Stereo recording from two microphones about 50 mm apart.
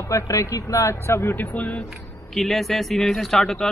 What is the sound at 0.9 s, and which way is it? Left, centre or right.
Speech, left.